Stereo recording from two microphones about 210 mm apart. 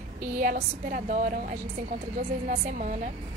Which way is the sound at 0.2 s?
40° right (ahead or behind).